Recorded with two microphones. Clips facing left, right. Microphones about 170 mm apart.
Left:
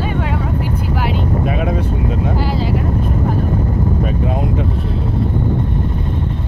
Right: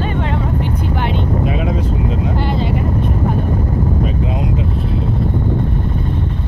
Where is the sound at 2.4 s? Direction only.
Centre (ahead or behind).